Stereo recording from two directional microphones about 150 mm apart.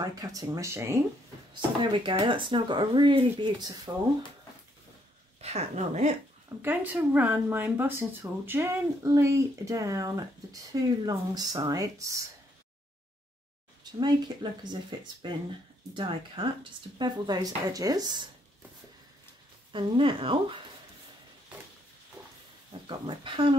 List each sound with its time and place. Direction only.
0.0 s speech: 25° right (ahead or behind)
1.5 s speech: 30° right (ahead or behind)
5.4 s speech: 45° right (ahead or behind)
6.6 s speech: 10° right (ahead or behind)
13.9 s speech: 30° right (ahead or behind)
19.7 s speech: 35° right (ahead or behind)
22.8 s speech: 35° right (ahead or behind)